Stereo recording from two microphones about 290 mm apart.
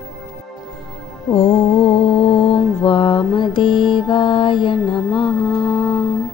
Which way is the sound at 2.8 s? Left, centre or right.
Centre.